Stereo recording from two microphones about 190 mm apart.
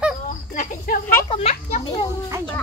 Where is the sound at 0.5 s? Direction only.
45° left (ahead or behind).